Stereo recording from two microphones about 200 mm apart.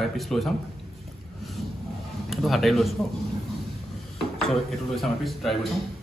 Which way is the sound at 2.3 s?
Centre (ahead or behind).